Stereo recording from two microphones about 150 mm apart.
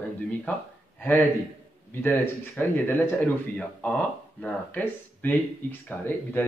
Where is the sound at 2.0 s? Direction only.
15° left (ahead or behind).